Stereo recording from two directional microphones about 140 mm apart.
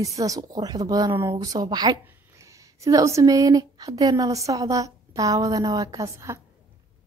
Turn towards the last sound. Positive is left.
turn(degrees=-20)  # may be behind; listen again after turning